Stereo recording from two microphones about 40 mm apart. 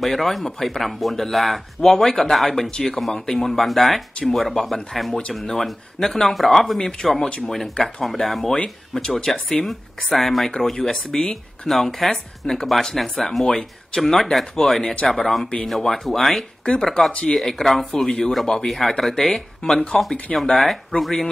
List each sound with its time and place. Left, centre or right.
0.0 s speech: centre
2.7 s speech: left
3.3 s speech: centre
16.6 s speech: centre